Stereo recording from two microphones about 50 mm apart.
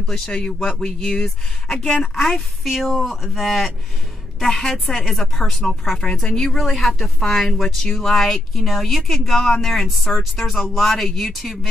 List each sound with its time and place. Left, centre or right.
0.0 s speech: centre
2.1 s speech: centre